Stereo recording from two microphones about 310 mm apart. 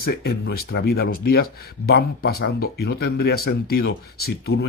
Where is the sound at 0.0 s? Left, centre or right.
Left.